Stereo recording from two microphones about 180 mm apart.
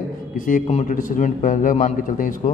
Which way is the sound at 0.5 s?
45° left (ahead or behind).